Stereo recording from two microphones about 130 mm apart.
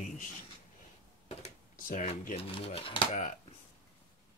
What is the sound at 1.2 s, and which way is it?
Computer keyboard, 60° left (ahead or behind).